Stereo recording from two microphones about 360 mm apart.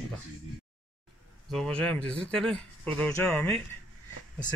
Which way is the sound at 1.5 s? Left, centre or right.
Centre.